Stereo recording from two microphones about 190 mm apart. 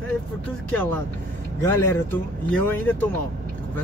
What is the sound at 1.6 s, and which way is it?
Speech, 15° left (ahead or behind).